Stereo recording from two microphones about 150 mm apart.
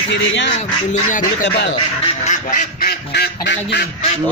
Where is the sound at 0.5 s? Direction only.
50° left (ahead or behind).